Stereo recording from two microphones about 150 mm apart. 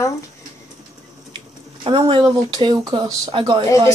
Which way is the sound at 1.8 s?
35° right (ahead or behind).